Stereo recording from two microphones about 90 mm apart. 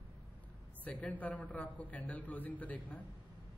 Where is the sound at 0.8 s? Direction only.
15° left (ahead or behind).